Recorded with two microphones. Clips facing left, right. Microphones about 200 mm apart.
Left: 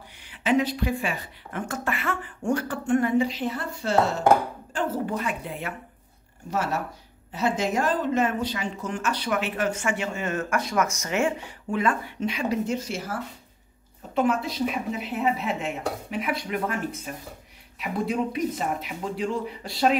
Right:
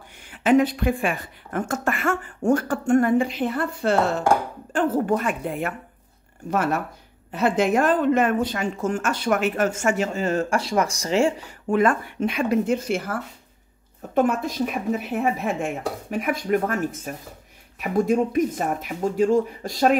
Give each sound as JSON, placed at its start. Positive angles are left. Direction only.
{"t": 0.2, "sound": "a woman's voice", "side_deg": -50}
{"t": 11.7, "sound": "a woman's voice", "side_deg": -50}